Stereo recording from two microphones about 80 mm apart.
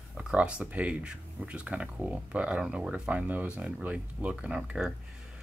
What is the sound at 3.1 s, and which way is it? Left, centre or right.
Speech, right.